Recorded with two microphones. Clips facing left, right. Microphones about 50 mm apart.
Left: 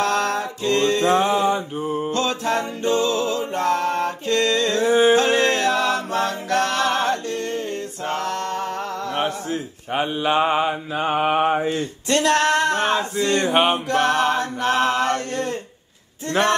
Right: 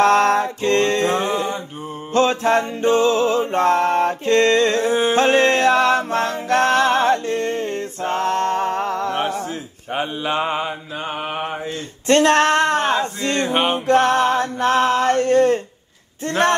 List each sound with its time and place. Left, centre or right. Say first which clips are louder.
0.0 s music: right 7 dB; right
1.5 s mantra: left 5 dB; centre
2.1 s music: right 9 dB; right
4.8 s carnatic music: left 2 dB; centre
5.1 s music: right 2 dB; right
9.3 s mantra: right 1 dB; centre
12.1 s music: right 4 dB; right
12.7 s a sound: right 2 dB; left
13.5 s mantra: left 1 dB; centre
13.8 s music: right 4 dB; right
14.8 s a sound: right 2 dB; left
15.0 s music: right 8 dB; right